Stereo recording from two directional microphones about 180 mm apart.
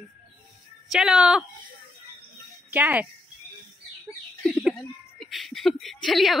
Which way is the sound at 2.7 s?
10° right (ahead or behind).